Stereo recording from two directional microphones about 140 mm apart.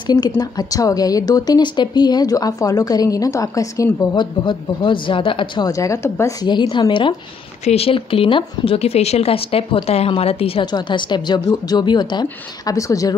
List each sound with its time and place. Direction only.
0.0 s speech: 30° left (ahead or behind)
5.7 s speech: 20° left (ahead or behind)
6.4 s a woman's voice: 30° left (ahead or behind)